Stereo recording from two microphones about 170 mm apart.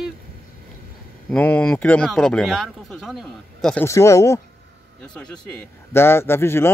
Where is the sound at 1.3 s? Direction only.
10° left (ahead or behind).